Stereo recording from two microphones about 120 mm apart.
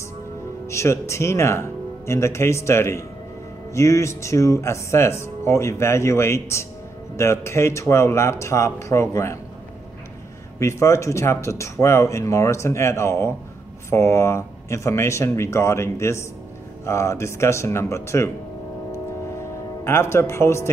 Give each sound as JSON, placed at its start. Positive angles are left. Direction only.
{"t": 0.7, "sound": "speech", "side_deg": 25}
{"t": 10.6, "sound": "speech", "side_deg": 25}
{"t": 18.9, "sound": "music", "side_deg": 25}